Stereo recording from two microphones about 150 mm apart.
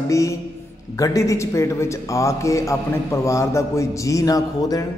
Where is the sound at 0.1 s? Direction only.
20° left (ahead or behind).